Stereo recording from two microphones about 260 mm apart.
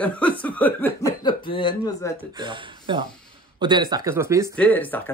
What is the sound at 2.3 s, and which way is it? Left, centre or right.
Speech, centre.